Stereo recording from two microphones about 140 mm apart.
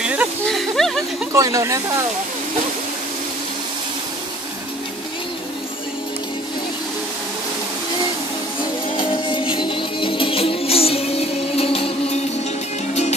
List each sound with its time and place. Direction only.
0.0 s snake: 10° right (ahead or behind)
0.5 s a sound: centre (ahead or behind)
1.3 s speech: 20° right (ahead or behind)
8.9 s music: 35° left (ahead or behind)